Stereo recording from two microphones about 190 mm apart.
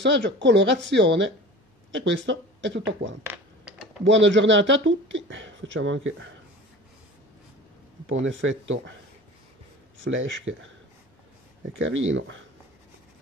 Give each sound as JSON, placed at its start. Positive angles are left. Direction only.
{"t": 0.0, "sound": "speech", "side_deg": -70}
{"t": 3.3, "sound": "typing", "side_deg": -5}
{"t": 4.0, "sound": "speech", "side_deg": -70}
{"t": 8.1, "sound": "speech", "side_deg": -80}
{"t": 10.0, "sound": "speech", "side_deg": -80}
{"t": 11.8, "sound": "speech", "side_deg": -85}